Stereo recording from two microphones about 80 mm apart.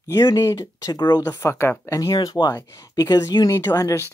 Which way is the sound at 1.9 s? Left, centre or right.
Left.